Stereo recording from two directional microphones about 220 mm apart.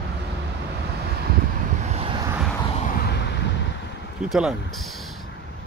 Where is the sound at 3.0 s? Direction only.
45° left (ahead or behind).